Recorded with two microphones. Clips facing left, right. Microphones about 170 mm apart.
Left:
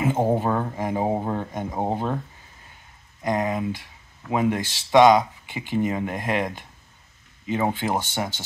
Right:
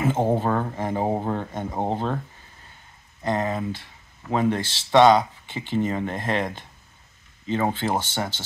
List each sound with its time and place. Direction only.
0.0 s speech: 10° left (ahead or behind)
3.2 s speech: 15° left (ahead or behind)